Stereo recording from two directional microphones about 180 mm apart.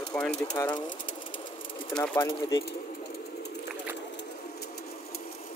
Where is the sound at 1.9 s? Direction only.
10° left (ahead or behind).